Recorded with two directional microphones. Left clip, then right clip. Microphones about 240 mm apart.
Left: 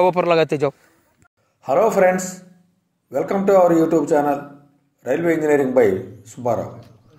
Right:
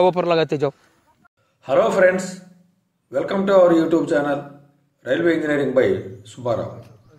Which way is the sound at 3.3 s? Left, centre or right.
Centre.